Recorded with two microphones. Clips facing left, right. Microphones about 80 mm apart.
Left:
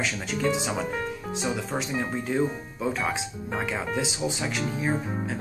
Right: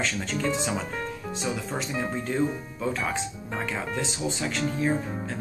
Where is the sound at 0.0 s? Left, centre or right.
Centre.